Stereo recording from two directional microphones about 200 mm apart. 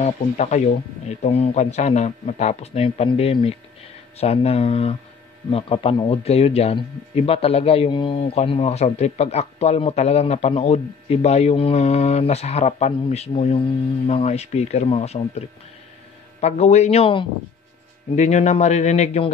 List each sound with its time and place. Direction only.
0.0 s speech: 35° left (ahead or behind)